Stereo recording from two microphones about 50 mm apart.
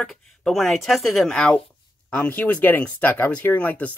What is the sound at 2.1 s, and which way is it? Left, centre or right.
Speech, left.